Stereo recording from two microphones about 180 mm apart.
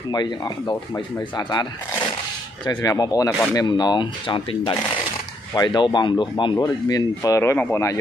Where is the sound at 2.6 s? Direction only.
20° left (ahead or behind).